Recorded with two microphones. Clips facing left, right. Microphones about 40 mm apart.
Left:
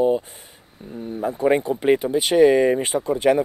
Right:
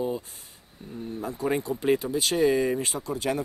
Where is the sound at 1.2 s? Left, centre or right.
Left.